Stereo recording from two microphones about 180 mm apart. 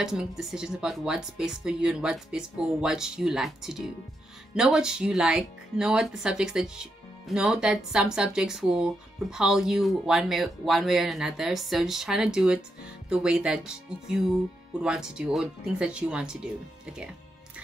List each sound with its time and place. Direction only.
0.0 s speech: 5° right (ahead or behind)